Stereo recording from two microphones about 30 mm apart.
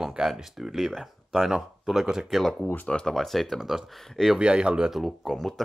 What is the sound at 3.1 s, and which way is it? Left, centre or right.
Speech, centre.